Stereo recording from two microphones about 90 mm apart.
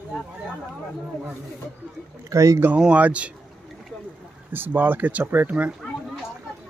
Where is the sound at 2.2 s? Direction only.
35° right (ahead or behind).